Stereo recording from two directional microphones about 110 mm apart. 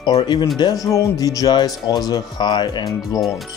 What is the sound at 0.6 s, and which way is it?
Speech, 35° left (ahead or behind).